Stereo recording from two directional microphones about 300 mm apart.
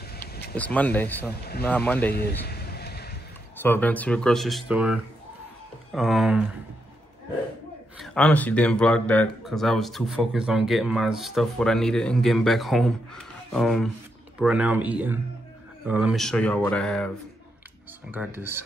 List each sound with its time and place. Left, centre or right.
0.6 s speech: centre
2.1 s a sound: left
3.6 s speech: centre
8.0 s speech: centre
18.1 s speech: centre